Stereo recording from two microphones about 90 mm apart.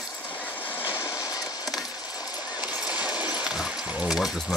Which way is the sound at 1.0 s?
50° left (ahead or behind).